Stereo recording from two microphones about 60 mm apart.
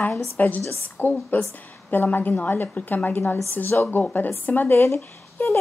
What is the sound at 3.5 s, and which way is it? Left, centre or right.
A woman's voice, left.